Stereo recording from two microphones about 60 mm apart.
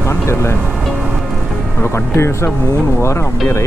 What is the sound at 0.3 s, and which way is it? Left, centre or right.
Speech, left.